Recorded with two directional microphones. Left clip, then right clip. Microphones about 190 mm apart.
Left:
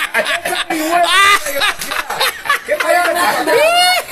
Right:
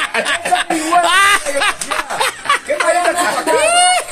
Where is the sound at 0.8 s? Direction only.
10° right (ahead or behind).